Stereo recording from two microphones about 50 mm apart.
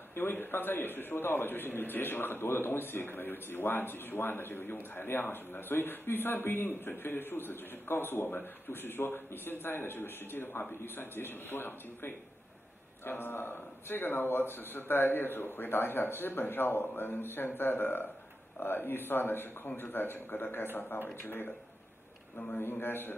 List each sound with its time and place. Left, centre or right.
0.1 s a man's voice: left
22.6 s a man's voice: left